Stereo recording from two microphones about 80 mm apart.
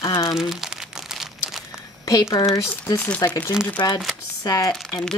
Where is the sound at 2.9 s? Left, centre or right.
Centre.